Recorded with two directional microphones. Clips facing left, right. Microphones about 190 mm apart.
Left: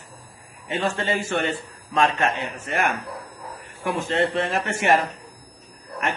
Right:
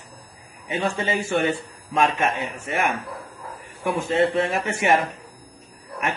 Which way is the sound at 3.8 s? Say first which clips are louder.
Right 2 dB; centre (ahead or behind).